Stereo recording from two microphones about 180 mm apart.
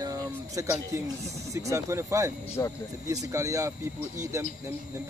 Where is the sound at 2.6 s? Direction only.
20° left (ahead or behind).